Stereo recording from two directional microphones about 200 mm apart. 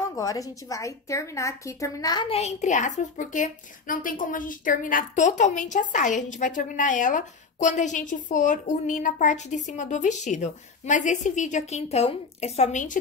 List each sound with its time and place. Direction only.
0.1 s a woman's voice: 15° left (ahead or behind); by 12.9 s 35° left (ahead or behind)